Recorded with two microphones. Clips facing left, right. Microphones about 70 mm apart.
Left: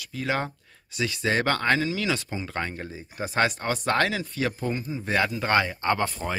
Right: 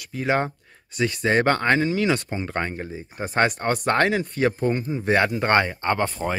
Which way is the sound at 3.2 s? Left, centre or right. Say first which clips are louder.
Right 3 dB; right.